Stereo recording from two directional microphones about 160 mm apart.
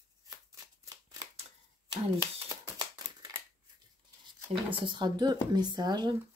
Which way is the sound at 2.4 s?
20° right (ahead or behind).